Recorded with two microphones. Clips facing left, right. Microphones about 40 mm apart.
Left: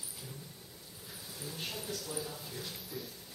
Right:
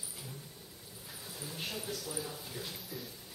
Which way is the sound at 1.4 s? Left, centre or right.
Centre.